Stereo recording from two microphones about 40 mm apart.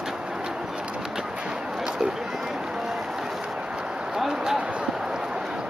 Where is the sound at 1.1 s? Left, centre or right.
Right.